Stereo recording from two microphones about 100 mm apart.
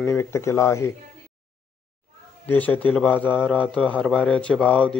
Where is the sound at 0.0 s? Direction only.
25° left (ahead or behind).